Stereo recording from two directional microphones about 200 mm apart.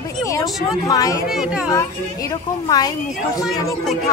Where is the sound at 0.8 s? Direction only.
15° left (ahead or behind).